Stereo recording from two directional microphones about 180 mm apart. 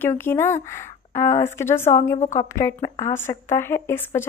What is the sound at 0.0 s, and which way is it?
A woman's voice, 10° left (ahead or behind).